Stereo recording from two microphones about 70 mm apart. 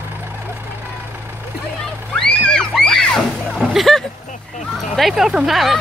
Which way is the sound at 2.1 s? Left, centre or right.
Centre.